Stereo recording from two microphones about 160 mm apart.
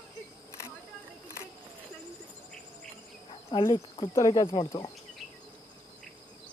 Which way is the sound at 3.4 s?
30° left (ahead or behind).